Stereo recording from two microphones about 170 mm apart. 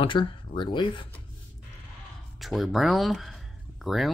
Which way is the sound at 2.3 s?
Centre (ahead or behind).